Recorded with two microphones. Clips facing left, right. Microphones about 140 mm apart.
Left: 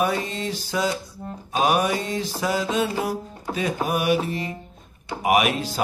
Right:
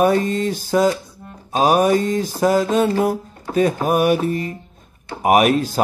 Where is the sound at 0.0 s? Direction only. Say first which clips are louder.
Right 8 dB; 45° right (ahead or behind).